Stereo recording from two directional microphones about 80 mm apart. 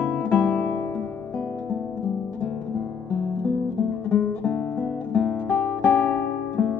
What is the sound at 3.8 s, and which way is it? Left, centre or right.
Music, centre.